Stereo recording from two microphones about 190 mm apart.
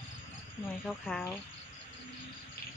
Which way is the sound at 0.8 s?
5° left (ahead or behind).